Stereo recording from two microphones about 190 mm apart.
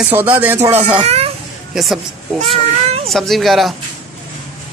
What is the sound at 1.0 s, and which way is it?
Speech, 35° right (ahead or behind).